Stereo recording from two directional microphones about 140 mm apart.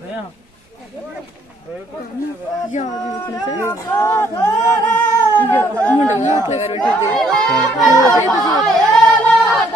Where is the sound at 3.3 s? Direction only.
25° left (ahead or behind).